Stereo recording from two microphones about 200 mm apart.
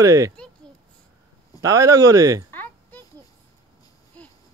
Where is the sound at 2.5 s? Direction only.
10° left (ahead or behind).